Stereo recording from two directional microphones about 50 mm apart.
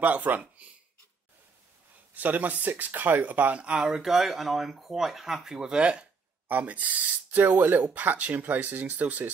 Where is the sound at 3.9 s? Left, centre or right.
Centre.